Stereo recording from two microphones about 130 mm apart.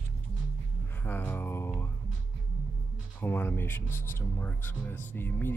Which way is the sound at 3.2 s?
15° left (ahead or behind).